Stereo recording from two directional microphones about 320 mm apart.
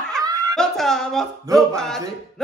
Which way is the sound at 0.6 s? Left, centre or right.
Centre.